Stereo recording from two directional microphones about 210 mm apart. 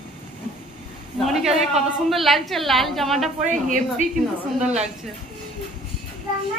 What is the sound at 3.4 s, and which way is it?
A woman's voice, 35° right (ahead or behind).